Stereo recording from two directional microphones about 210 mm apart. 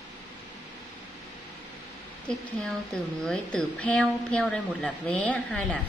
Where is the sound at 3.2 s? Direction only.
5° left (ahead or behind).